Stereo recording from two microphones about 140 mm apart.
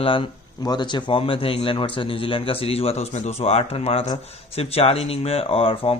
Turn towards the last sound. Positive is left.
turn(degrees=40)  # may be behind; listen again after turning